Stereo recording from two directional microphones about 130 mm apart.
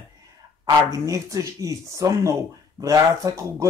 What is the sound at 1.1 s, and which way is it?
Speech, 25° right (ahead or behind).